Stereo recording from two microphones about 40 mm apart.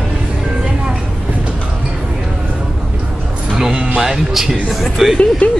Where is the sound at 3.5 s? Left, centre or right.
Centre.